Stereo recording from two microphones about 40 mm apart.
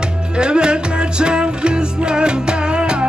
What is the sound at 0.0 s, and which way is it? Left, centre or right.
Music, right.